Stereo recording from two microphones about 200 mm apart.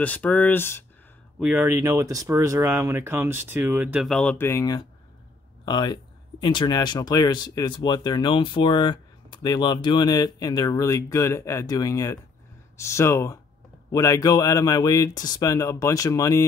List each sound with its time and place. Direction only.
0.0 s speech: 5° left (ahead or behind)
1.4 s speech: 10° right (ahead or behind); by 16.4 s 15° left (ahead or behind)